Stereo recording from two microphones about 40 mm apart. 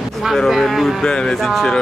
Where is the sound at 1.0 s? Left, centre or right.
Centre.